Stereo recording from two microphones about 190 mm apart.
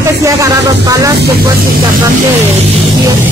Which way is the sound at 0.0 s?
15° right (ahead or behind).